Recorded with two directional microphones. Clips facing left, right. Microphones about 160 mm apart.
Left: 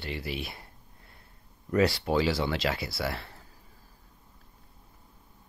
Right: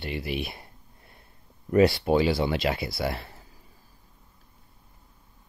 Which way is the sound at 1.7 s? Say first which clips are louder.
Right 5 dB; 20° right (ahead or behind).